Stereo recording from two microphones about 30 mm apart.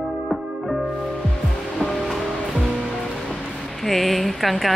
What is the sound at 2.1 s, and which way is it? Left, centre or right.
Music, centre.